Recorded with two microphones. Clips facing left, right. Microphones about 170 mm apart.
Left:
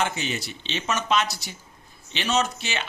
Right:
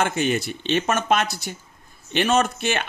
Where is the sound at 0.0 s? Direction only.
50° right (ahead or behind).